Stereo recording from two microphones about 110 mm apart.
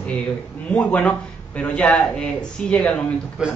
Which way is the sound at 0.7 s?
10° left (ahead or behind).